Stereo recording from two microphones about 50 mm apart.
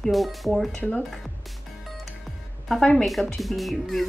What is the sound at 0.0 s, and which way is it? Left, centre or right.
Music, centre.